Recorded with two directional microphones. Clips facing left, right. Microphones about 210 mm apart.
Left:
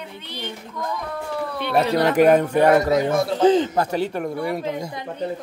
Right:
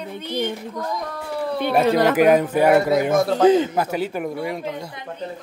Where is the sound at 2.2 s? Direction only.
Centre (ahead or behind).